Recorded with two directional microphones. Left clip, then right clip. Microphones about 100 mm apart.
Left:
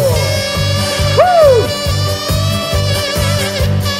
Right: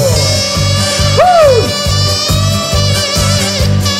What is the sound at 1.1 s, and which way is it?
Music, 40° right (ahead or behind).